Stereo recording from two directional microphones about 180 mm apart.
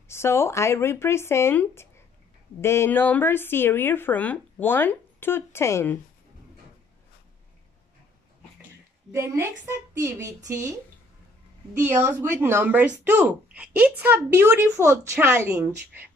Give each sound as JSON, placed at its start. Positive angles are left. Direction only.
{"t": 0.1, "sound": "speech", "side_deg": 15}
{"t": 9.1, "sound": "speech", "side_deg": -15}
{"t": 11.7, "sound": "speech", "side_deg": -15}